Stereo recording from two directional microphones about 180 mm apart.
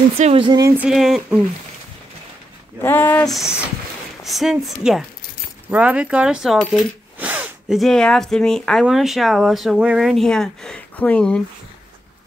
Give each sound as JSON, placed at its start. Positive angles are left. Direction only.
{"t": 0.2, "sound": "speech", "side_deg": -30}
{"t": 0.7, "sound": "speech", "side_deg": 0}
{"t": 2.8, "sound": "speech", "side_deg": 10}
{"t": 4.2, "sound": "speech", "side_deg": 0}